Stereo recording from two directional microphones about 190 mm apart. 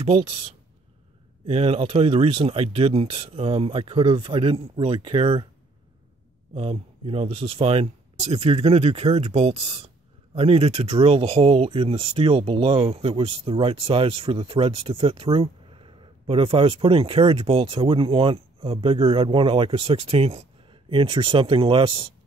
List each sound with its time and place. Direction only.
0.0 s speech: 30° right (ahead or behind)
6.5 s speech: 30° right (ahead or behind)